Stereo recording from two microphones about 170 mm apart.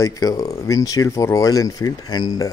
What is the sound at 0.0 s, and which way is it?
Speech, 20° left (ahead or behind).